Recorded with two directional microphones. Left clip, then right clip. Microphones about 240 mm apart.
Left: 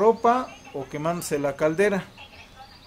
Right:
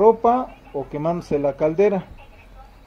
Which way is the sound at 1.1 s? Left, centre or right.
Right.